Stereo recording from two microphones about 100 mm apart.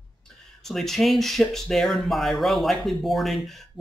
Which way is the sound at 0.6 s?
5° left (ahead or behind).